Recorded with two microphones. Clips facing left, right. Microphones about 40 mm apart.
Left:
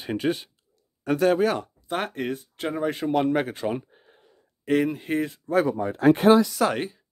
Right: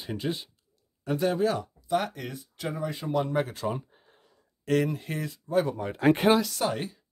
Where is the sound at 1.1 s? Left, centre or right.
Left.